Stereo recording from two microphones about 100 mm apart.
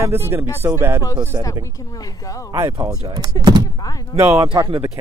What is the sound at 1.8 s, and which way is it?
Speech, 35° left (ahead or behind).